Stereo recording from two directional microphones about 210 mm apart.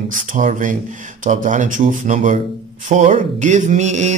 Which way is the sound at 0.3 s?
40° right (ahead or behind).